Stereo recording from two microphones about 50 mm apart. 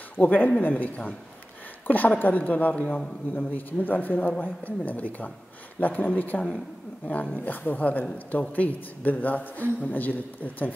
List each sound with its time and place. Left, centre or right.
0.2 s speech: left